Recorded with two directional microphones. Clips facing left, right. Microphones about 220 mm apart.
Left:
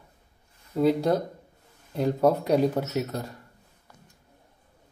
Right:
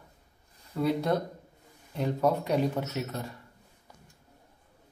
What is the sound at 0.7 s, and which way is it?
Speech, 30° left (ahead or behind).